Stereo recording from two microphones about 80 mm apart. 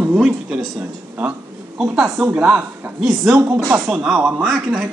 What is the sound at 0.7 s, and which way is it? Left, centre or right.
Speech, centre.